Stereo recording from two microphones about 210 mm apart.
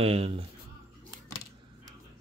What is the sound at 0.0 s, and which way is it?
Speech, 30° right (ahead or behind).